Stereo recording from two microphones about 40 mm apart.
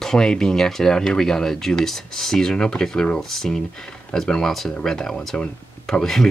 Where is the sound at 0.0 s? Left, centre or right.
Centre.